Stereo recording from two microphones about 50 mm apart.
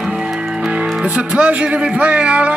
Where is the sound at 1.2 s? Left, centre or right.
Right.